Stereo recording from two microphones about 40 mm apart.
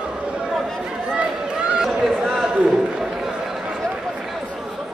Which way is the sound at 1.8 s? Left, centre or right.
Centre.